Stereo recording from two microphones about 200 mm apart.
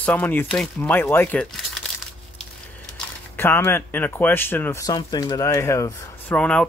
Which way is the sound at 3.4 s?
10° left (ahead or behind).